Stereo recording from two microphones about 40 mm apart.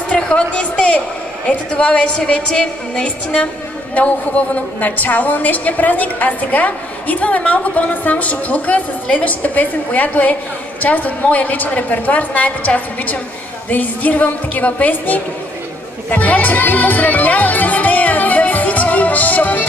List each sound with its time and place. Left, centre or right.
0.2 s a sound: left
1.7 s a woman's voice: left
16.1 s music: left